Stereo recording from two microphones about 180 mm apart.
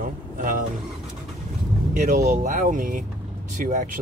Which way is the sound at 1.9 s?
45° right (ahead or behind).